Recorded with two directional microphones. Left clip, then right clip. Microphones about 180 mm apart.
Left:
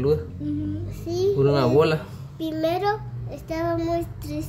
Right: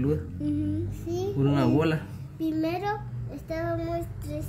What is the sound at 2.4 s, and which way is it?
A child's voice, 40° left (ahead or behind).